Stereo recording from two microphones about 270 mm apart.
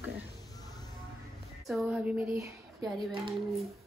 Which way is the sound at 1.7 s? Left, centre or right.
Centre.